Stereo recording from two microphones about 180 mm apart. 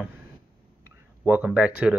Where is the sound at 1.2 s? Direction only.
5° right (ahead or behind).